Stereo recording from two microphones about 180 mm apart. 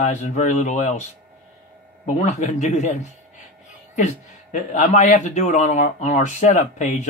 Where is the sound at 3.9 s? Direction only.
40° left (ahead or behind).